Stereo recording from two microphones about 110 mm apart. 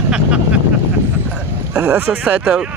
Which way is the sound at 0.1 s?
10° right (ahead or behind).